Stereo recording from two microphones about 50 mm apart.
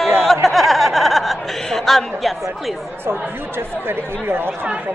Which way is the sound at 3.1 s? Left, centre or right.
Right.